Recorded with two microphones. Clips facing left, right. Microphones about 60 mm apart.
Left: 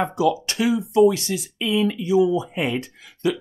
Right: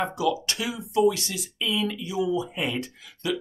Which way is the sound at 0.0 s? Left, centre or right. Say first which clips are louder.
Left 5 dB; left.